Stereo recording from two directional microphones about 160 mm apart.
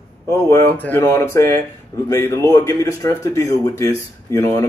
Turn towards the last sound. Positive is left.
turn(degrees=20)  # may be behind; listen again after turning